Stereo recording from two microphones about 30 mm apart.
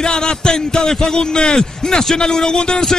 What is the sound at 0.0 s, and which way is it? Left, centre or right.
Speech, left.